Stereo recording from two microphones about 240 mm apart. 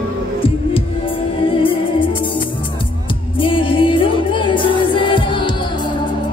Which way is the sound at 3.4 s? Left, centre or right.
Left.